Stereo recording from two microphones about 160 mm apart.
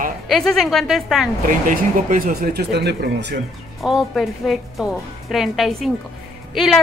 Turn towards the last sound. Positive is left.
turn(degrees=0)  # may be behind; listen again after turning